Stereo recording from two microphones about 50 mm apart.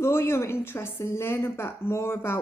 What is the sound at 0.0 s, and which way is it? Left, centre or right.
A woman's voice, left.